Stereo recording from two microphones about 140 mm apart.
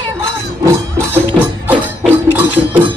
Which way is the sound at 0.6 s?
15° right (ahead or behind).